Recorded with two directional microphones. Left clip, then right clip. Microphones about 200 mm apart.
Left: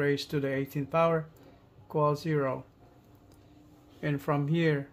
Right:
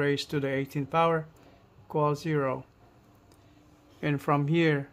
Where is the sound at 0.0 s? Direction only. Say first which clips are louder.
Right 1 dB; 20° right (ahead or behind).